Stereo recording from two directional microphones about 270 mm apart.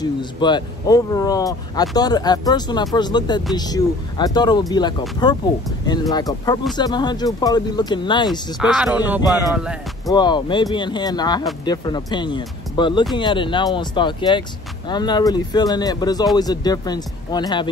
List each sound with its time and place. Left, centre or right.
0.0 s speech: centre
8.5 s speech: centre
10.1 s speech: centre